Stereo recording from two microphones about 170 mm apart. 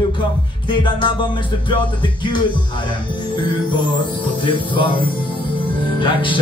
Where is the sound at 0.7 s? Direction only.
30° left (ahead or behind).